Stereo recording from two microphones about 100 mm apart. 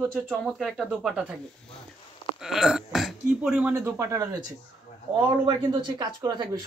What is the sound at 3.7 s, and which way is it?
Speech, 25° right (ahead or behind).